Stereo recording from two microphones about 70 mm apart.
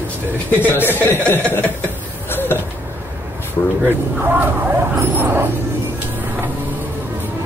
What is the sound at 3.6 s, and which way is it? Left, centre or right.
Speech, left.